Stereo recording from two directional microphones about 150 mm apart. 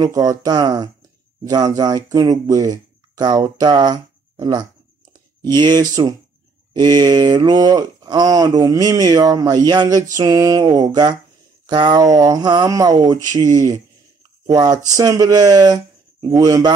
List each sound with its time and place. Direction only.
0.0 s speech: 25° right (ahead or behind)